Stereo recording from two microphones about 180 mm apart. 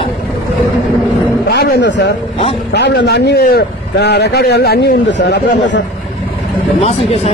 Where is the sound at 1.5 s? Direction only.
65° left (ahead or behind).